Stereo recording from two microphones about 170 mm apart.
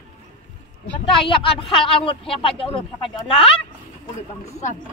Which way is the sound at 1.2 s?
30° left (ahead or behind).